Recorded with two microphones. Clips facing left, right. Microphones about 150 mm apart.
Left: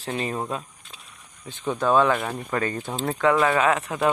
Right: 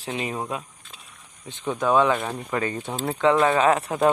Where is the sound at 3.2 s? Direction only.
25° right (ahead or behind).